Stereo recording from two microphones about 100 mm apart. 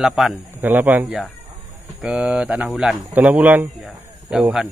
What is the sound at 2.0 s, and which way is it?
Speech, 5° right (ahead or behind).